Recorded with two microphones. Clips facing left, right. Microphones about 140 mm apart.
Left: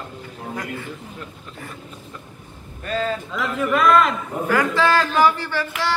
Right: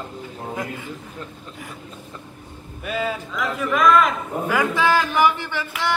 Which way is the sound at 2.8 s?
10° right (ahead or behind).